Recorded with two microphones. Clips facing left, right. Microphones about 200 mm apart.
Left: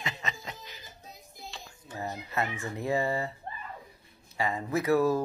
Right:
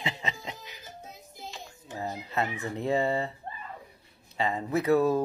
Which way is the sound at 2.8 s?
20° right (ahead or behind).